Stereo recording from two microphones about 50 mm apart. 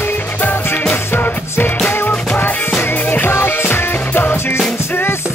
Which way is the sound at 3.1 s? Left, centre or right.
Left.